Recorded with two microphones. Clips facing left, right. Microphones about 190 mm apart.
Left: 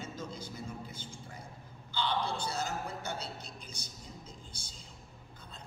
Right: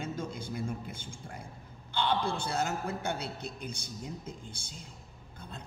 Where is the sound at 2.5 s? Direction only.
55° right (ahead or behind).